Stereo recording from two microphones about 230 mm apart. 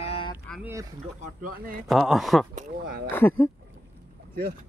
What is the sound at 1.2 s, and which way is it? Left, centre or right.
Speech, right.